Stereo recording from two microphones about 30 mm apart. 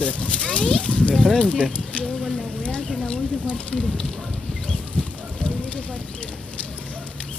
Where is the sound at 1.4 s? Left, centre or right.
Left.